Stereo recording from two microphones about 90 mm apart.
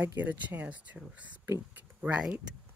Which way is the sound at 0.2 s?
20° right (ahead or behind).